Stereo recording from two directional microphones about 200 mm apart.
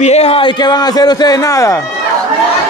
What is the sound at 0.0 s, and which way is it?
Speech, 30° left (ahead or behind).